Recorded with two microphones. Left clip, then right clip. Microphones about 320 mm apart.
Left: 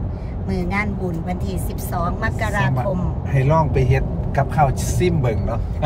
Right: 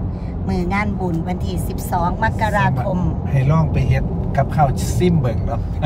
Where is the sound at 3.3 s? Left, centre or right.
Left.